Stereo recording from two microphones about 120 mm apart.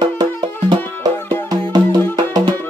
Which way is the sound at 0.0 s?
40° right (ahead or behind).